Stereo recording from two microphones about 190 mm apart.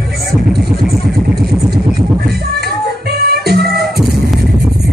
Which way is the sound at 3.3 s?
55° right (ahead or behind).